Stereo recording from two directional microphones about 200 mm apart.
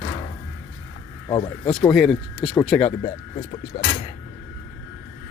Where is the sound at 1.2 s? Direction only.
20° left (ahead or behind).